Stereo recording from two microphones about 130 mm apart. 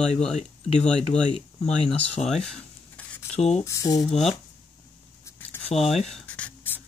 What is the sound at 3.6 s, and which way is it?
Speech, 25° left (ahead or behind).